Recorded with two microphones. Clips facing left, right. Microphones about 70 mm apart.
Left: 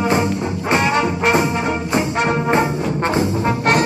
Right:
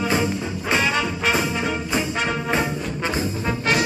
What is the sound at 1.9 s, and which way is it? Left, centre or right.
Brass instrument, left.